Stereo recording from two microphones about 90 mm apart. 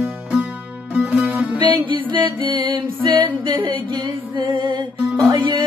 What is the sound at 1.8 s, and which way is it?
Music, 60° right (ahead or behind).